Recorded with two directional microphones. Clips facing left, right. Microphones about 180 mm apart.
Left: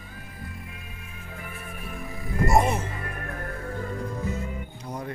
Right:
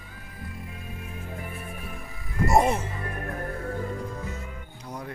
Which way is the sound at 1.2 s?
30° right (ahead or behind).